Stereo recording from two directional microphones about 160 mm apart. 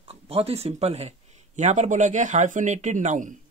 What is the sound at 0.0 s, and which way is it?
Speech, 35° right (ahead or behind).